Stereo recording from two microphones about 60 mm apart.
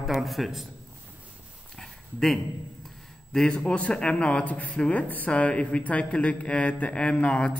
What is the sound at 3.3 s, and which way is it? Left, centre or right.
Speech, centre.